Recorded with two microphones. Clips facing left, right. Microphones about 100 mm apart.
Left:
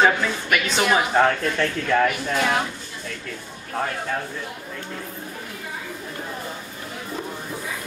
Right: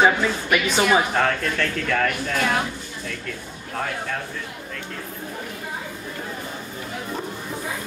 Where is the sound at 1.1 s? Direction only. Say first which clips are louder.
Left 3 dB; 15° left (ahead or behind).